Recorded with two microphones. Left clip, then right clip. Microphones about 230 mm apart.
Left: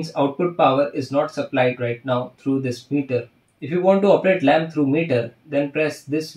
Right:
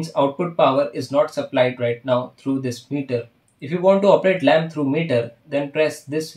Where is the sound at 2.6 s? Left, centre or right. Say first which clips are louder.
Left 2 dB; right.